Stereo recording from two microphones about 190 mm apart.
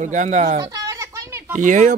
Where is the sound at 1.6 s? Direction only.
40° right (ahead or behind).